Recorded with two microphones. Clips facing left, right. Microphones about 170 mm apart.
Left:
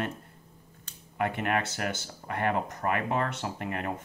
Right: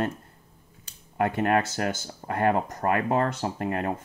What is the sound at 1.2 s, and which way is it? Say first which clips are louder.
Speech: right 5 dB; 35° right (ahead or behind).